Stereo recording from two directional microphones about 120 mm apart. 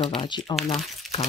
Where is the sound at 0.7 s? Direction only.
Centre (ahead or behind).